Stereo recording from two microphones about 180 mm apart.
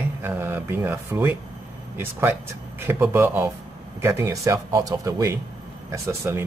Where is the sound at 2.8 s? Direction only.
10° right (ahead or behind).